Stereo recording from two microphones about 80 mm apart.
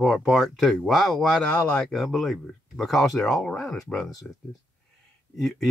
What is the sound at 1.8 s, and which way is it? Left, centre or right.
Speech, centre.